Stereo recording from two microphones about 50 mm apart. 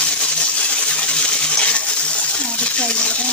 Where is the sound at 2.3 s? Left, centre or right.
Left.